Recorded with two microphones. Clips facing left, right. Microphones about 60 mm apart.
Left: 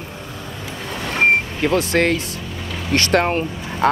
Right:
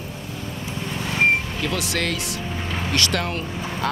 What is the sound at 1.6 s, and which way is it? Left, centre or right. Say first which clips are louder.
Speech: left 8 dB; left.